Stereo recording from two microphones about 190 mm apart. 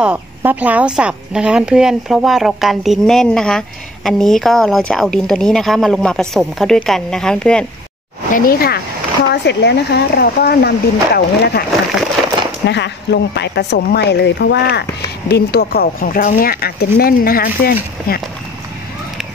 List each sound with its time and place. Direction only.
0.0 s speech: 10° right (ahead or behind)
8.3 s speech: 50° left (ahead or behind)
9.3 s speech: 65° left (ahead or behind)
12.6 s speech: 65° left (ahead or behind)